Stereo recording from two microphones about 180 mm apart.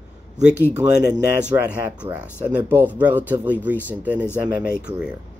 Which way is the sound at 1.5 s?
15° right (ahead or behind).